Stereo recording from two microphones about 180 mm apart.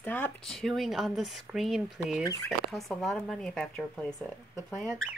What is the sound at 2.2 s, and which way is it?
Speech, 20° left (ahead or behind).